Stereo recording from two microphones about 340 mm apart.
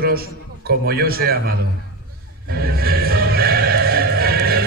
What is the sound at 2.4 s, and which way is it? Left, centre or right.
Music, right.